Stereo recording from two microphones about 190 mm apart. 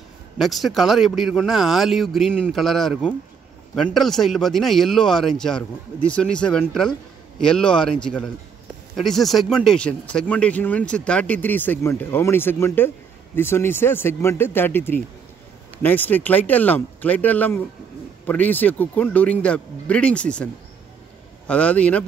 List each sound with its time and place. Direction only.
0.4 s a man's voice: centre (ahead or behind)
21.5 s speech: 5° left (ahead or behind)